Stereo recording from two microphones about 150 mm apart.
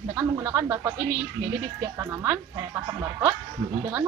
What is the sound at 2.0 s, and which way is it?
A woman's voice, 20° right (ahead or behind).